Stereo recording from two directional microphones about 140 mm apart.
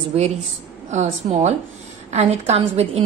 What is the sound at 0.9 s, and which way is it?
A woman's voice, 55° right (ahead or behind).